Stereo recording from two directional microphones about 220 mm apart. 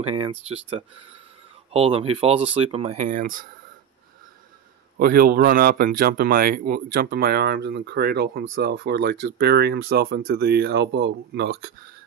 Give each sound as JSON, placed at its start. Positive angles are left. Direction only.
{"t": 0.0, "sound": "speech", "side_deg": -25}
{"t": 4.9, "sound": "speech", "side_deg": -40}